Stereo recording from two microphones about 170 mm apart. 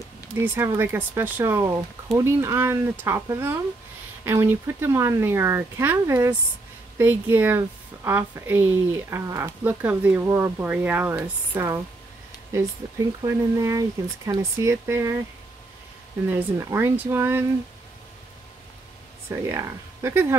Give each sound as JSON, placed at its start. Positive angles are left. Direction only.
{"t": 0.4, "sound": "speech", "side_deg": -15}
{"t": 13.2, "sound": "speech", "side_deg": -20}
{"t": 16.3, "sound": "speech", "side_deg": -15}
{"t": 19.2, "sound": "speech", "side_deg": -15}